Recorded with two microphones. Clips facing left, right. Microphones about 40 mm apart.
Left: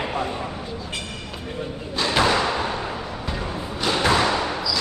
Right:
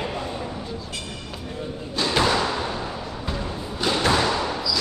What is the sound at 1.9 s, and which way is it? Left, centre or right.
Thump, centre.